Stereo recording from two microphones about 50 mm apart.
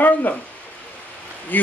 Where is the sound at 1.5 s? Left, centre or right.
Left.